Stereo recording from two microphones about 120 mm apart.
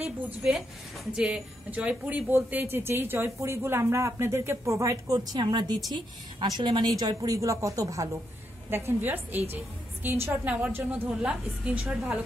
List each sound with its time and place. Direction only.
0.4 s a woman's voice: 5° right (ahead or behind)